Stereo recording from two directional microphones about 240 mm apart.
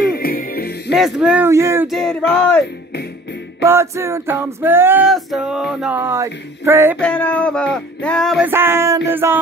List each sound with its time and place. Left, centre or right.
0.0 s music: left
0.9 s male singing: centre
1.9 s music: centre
3.6 s male singing: centre
7.0 s music: centre